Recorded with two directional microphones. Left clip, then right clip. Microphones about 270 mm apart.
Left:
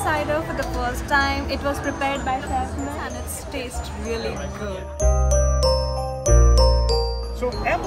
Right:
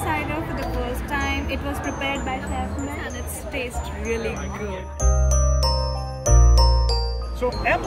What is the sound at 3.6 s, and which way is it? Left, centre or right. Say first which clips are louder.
Speech: right 2 dB; centre.